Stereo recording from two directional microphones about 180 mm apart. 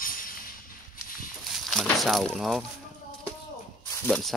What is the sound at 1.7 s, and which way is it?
Speech, centre (ahead or behind).